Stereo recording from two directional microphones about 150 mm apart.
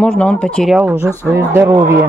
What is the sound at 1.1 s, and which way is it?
Speech, 20° right (ahead or behind).